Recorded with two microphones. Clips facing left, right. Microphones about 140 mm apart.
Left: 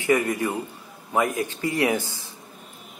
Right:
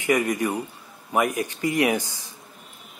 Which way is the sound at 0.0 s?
15° right (ahead or behind).